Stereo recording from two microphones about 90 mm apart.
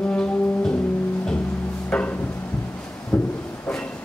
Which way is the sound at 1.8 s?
15° left (ahead or behind).